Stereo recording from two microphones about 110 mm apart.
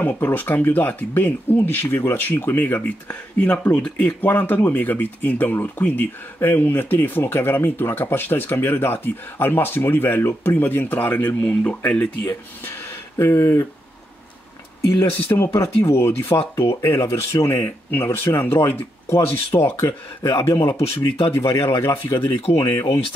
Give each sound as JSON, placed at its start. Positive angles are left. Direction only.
{"t": 0.0, "sound": "speech", "side_deg": 15}
{"t": 15.0, "sound": "speech", "side_deg": 20}
{"t": 21.5, "sound": "speech", "side_deg": 20}
{"t": 22.2, "sound": "speech", "side_deg": 60}
{"t": 22.6, "sound": "speech", "side_deg": 25}